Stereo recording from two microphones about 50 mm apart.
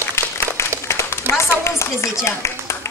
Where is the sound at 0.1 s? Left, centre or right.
Left.